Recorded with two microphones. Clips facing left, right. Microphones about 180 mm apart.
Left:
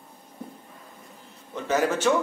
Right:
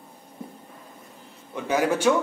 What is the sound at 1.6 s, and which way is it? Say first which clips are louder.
Speech: right 1 dB; 10° right (ahead or behind).